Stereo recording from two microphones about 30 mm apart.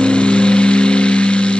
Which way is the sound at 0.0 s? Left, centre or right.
Left.